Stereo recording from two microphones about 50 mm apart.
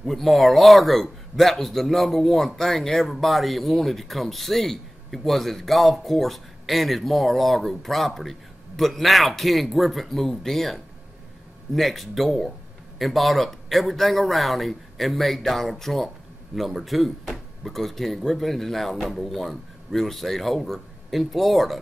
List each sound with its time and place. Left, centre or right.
0.0 s a man's voice: centre